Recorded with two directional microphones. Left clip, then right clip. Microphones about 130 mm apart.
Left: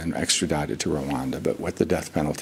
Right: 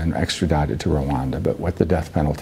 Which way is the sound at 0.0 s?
35° right (ahead or behind).